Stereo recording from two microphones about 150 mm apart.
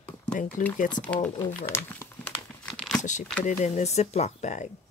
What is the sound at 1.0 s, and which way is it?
Speech, 10° left (ahead or behind).